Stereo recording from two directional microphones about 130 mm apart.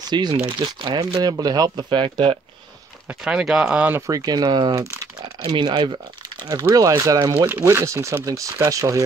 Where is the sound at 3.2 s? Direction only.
5° right (ahead or behind); by 7.5 s 30° right (ahead or behind).